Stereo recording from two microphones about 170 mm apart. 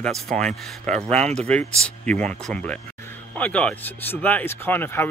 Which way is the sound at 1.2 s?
40° right (ahead or behind).